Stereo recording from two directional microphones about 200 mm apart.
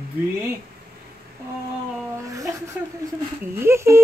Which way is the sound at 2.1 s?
15° right (ahead or behind).